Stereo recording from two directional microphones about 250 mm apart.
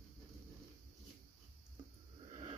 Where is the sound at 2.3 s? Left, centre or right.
Right.